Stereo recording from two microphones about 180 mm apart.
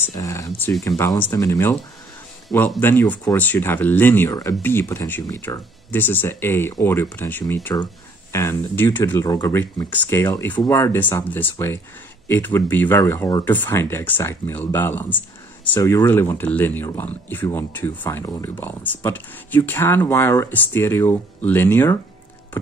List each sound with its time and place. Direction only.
0.2 s speech: 15° left (ahead or behind)
2.8 s speech: 10° left (ahead or behind)